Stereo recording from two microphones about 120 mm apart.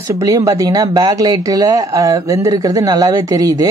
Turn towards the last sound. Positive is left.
turn(degrees=-30)  # may be behind; listen again after turning